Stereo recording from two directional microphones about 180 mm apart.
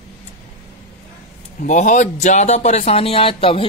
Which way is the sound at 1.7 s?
40° left (ahead or behind).